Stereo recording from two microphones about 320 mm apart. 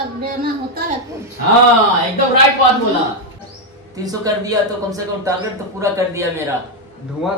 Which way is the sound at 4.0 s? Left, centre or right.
Centre.